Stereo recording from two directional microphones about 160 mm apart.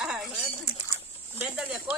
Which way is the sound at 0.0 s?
5° right (ahead or behind).